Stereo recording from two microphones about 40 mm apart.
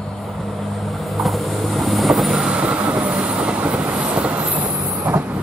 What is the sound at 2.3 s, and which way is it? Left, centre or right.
Train, centre.